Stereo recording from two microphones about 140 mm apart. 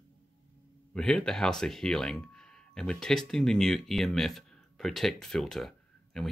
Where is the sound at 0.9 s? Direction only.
5° left (ahead or behind).